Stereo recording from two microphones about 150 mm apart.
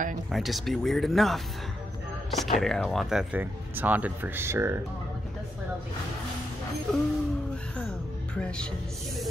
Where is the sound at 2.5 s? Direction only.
Centre (ahead or behind); by 4.8 s 15° right (ahead or behind).